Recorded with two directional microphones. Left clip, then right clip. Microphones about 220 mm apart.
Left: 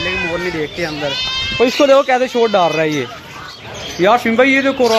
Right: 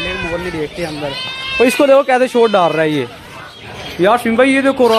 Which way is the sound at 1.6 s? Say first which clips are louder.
Right 1 dB; 15° right (ahead or behind).